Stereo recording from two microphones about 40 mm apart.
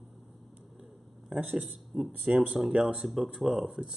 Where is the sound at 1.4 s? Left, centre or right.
Right.